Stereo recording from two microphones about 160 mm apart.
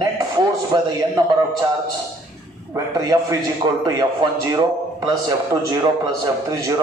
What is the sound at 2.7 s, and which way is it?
A man's voice, 20° right (ahead or behind).